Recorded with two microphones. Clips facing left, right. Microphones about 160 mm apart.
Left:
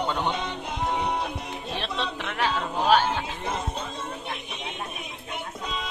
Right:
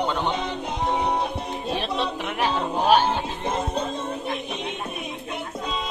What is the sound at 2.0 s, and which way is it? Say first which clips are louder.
Speech: right 3 dB; 15° right (ahead or behind).